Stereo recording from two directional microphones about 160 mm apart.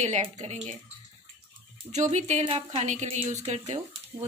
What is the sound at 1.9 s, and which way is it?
A woman's voice, 45° right (ahead or behind).